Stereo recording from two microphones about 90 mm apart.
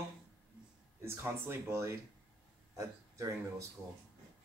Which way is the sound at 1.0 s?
25° right (ahead or behind).